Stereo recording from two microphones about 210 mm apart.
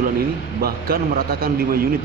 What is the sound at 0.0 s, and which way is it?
A man's voice, 45° right (ahead or behind).